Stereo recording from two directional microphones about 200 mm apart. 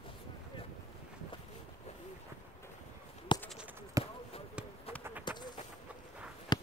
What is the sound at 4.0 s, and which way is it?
Basketball bounce, 15° right (ahead or behind).